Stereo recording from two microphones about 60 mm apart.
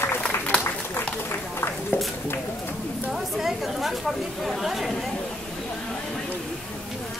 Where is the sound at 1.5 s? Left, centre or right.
Left.